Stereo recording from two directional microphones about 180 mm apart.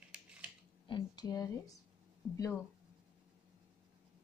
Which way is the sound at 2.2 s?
Centre (ahead or behind).